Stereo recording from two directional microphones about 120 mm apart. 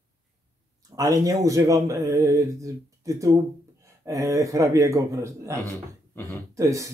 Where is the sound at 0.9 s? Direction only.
30° right (ahead or behind).